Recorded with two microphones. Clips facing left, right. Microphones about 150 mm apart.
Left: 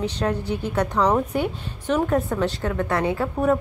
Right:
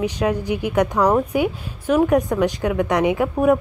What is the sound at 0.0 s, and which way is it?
A woman's voice, 10° right (ahead or behind).